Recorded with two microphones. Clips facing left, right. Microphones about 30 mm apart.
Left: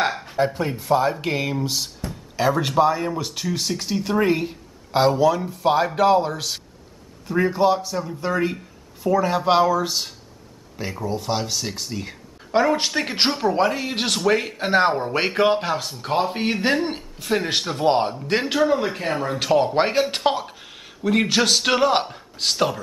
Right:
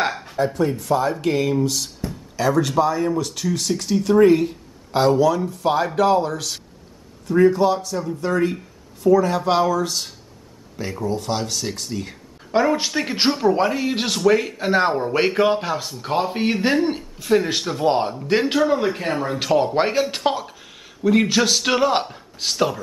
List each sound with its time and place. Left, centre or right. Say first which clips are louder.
0.0 s a sound: even; centre
0.4 s speech: right 2 dB; left
0.8 s speech: left 4 dB; centre